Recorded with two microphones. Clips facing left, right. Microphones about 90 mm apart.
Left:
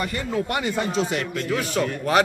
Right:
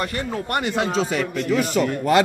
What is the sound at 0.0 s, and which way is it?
Speech, 55° right (ahead or behind).